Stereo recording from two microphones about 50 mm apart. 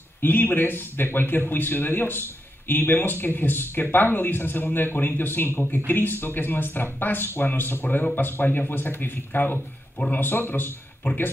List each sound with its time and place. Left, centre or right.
0.2 s speech: left
9.9 s speech: left
10.2 s speech: left